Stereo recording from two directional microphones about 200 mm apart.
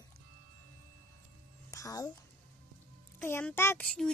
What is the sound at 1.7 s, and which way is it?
Babbling, 15° left (ahead or behind).